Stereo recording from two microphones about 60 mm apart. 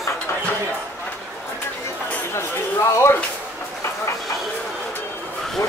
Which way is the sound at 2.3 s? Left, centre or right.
Left.